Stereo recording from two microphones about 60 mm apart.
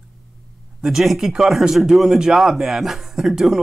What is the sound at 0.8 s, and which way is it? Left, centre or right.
Speech, centre.